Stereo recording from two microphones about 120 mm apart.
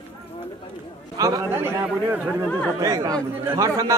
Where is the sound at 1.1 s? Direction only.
30° right (ahead or behind).